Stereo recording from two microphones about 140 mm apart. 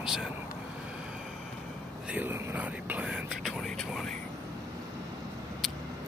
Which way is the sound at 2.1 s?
15° right (ahead or behind).